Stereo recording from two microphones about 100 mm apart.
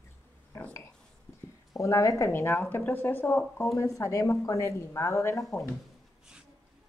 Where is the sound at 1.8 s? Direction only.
30° left (ahead or behind).